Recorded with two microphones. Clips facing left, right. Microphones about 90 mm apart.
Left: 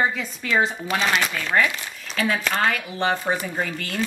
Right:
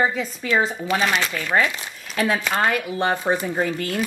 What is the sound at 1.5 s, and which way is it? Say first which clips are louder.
A woman's voice: right 1 dB; 25° right (ahead or behind).